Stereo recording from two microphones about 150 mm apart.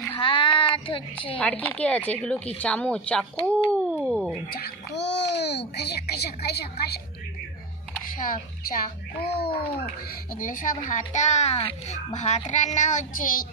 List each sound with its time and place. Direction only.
0.1 s a sound: 35° left (ahead or behind)
0.7 s child singing: 35° left (ahead or behind)
1.4 s speech: 10° left (ahead or behind)
4.5 s a child's voice: 90° left
8.2 s a child's voice: 70° left (ahead or behind)
9.6 s a child's voice: 70° left (ahead or behind)